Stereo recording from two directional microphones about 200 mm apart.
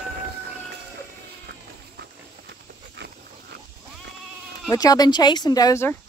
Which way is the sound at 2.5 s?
55° right (ahead or behind).